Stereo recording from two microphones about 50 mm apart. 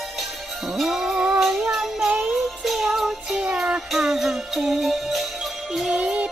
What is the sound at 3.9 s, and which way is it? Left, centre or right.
Music, centre.